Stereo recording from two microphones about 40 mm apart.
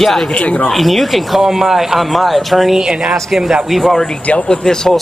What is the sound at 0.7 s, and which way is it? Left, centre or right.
Speech, centre.